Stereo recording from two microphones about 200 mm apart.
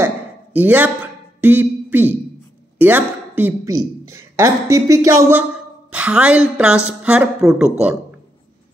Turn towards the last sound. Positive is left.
turn(degrees=-5)  # may be behind; listen again after turning